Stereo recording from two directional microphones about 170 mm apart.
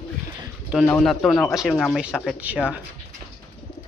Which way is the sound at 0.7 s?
Centre (ahead or behind).